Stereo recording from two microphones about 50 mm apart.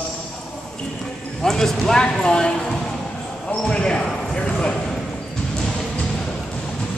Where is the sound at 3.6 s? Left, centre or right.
Centre.